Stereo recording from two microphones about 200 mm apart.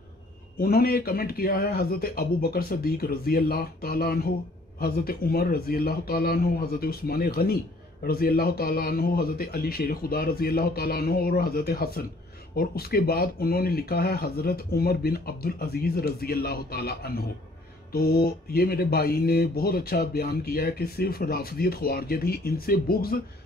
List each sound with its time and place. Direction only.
0.6 s speech: 50° left (ahead or behind)